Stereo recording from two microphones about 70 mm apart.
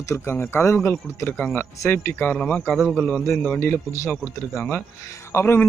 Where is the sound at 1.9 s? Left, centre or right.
Left.